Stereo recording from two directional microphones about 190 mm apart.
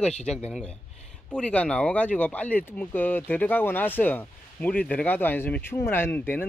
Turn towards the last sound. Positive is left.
turn(degrees=10)  # may be behind; listen again after turning